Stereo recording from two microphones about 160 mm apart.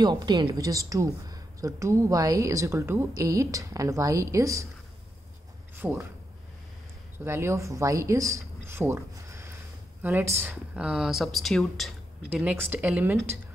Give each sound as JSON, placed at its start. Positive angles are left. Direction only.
{"t": 0.0, "sound": "a woman's voice", "side_deg": -25}
{"t": 5.8, "sound": "speech", "side_deg": -15}
{"t": 7.2, "sound": "speech", "side_deg": -15}